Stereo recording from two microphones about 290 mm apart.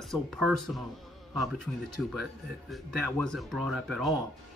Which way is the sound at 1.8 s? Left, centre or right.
Right.